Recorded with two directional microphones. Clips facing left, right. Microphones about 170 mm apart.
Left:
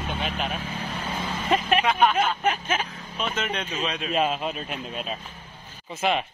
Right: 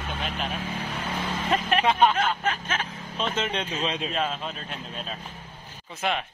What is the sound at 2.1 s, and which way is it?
Speech, 15° left (ahead or behind).